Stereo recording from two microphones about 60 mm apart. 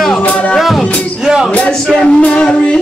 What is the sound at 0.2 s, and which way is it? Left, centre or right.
Music, centre.